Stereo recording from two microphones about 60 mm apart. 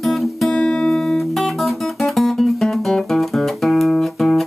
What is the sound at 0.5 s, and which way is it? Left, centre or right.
Music, centre.